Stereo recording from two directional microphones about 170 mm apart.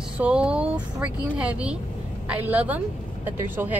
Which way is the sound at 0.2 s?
5° right (ahead or behind).